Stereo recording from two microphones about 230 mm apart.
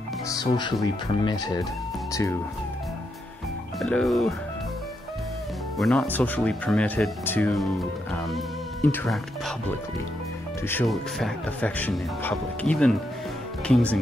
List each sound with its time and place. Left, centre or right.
0.3 s speech: centre
3.8 s speech: centre
5.8 s speech: centre
10.7 s speech: centre